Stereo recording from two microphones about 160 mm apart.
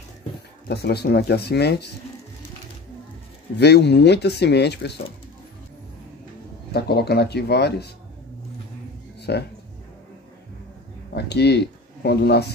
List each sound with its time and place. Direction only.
0.7 s speech: 90° left
3.5 s speech: 90° left
6.7 s speech: 85° left
9.3 s speech: 90° left
11.1 s speech: 90° left